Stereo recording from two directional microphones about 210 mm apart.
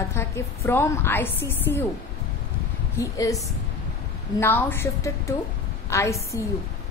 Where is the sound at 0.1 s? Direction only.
10° left (ahead or behind).